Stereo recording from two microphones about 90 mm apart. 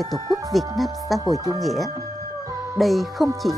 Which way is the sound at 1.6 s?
Centre (ahead or behind).